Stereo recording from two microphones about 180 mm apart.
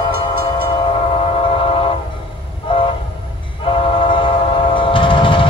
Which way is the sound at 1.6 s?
30° left (ahead or behind).